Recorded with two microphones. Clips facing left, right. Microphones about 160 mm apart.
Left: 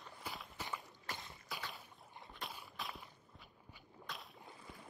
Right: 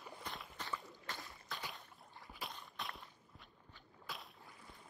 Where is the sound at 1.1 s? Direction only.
20° left (ahead or behind).